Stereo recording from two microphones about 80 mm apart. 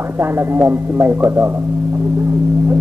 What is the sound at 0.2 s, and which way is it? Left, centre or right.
Speech, right.